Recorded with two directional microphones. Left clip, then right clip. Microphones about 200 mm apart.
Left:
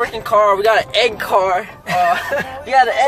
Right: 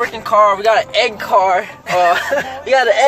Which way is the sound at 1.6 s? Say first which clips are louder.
Right 2 dB; 40° right (ahead or behind).